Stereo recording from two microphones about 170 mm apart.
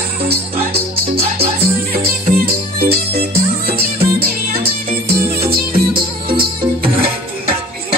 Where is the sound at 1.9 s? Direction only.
65° right (ahead or behind).